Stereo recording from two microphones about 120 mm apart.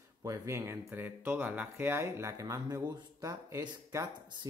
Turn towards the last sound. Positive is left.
turn(degrees=-25)  # may be behind; listen again after turning